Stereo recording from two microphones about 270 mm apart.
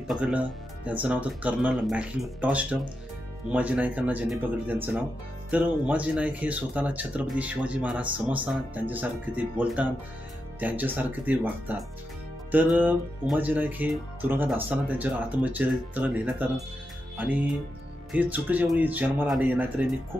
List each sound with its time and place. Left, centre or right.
0.1 s speech: centre
12.7 s speech: centre
18.1 s speech: centre